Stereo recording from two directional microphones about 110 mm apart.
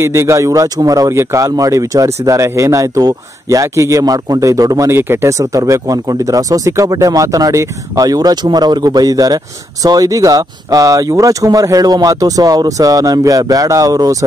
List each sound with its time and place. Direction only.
0.0 s a man's voice: 25° right (ahead or behind)